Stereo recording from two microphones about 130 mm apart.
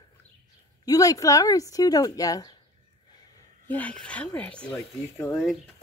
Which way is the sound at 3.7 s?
10° left (ahead or behind).